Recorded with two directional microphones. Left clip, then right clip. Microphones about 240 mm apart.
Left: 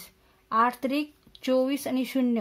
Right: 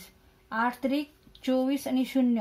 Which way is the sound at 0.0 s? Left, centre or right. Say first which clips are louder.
Left 2 dB; left.